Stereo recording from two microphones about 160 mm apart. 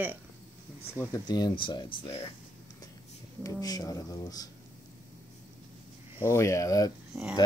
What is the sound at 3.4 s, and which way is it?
Speech, 20° left (ahead or behind).